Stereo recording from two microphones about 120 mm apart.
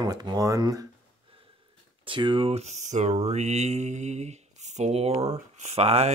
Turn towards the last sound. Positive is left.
turn(degrees=-60)  # may be behind; listen again after turning